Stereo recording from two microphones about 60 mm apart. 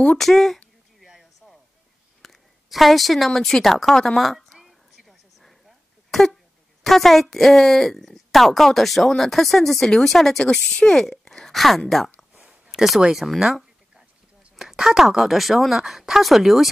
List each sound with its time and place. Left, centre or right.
0.2 s speech: centre
2.2 s a woman's voice: centre
4.6 s a sound: centre
6.1 s speech: centre
12.4 s a sound: centre
12.7 s speech: centre